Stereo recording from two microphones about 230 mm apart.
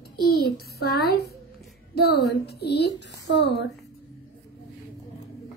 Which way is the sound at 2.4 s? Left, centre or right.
Left.